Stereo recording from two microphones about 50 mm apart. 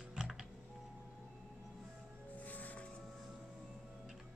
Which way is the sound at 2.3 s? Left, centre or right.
Left.